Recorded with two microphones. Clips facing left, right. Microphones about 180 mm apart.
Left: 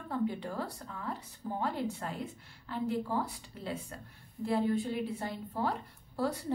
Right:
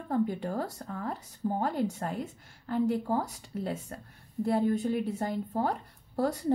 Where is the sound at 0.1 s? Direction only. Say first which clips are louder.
Right 5 dB; 45° right (ahead or behind).